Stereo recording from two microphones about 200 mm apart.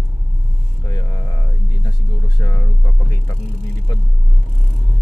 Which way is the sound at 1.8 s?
20° left (ahead or behind).